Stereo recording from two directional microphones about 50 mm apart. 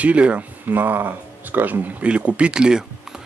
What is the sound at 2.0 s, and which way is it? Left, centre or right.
Speech, right.